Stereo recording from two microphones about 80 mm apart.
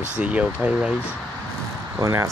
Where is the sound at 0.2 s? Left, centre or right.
Centre.